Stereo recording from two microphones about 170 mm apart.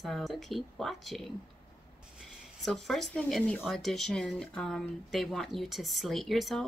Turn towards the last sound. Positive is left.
turn(degrees=0)  # may be behind; listen again after turning